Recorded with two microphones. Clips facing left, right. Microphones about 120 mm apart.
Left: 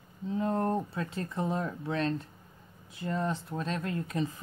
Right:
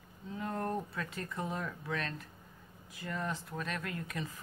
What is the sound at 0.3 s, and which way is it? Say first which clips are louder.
Speech: left 7 dB; 30° left (ahead or behind).